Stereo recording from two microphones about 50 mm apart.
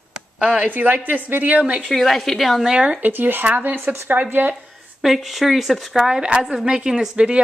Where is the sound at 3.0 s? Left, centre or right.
Right.